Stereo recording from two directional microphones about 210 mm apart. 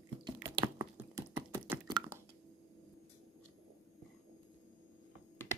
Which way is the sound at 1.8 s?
20° right (ahead or behind).